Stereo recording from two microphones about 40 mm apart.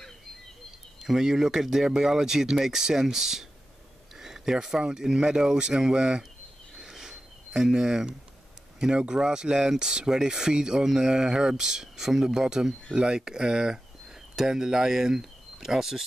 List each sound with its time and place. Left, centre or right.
1.0 s speech: centre
6.8 s a sound: centre
8.7 s speech: centre